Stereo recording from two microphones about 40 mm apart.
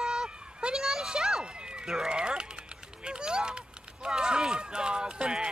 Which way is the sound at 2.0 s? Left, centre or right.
Right.